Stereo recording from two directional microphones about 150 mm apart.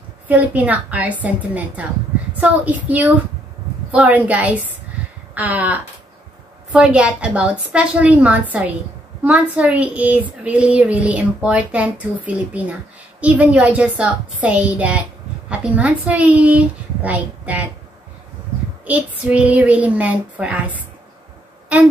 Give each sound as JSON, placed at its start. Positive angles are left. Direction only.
{"t": 0.3, "sound": "speech", "side_deg": -10}
{"t": 5.3, "sound": "a sound", "side_deg": -10}
{"t": 6.7, "sound": "speech", "side_deg": -10}
{"t": 18.9, "sound": "speech", "side_deg": -10}